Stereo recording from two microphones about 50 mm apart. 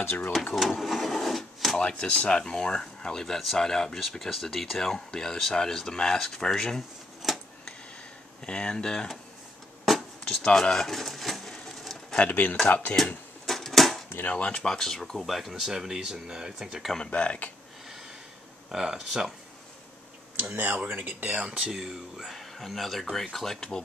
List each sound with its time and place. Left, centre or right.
0.0 s speech: left
0.6 s vehicle: centre
1.8 s speech: left
7.3 s a sound: centre
8.5 s speech: centre
10.2 s a sound: centre
12.3 s speech: left
13.5 s typewriter: centre
14.3 s speech: centre
17.1 s speech: left
18.7 s speech: centre
20.5 s speech: right
21.4 s speech: centre